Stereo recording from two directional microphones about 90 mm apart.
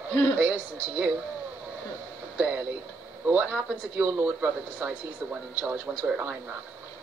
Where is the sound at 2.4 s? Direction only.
20° right (ahead or behind).